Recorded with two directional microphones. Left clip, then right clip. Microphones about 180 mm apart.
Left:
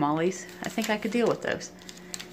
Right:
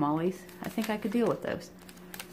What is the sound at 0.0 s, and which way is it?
Speech, 5° right (ahead or behind).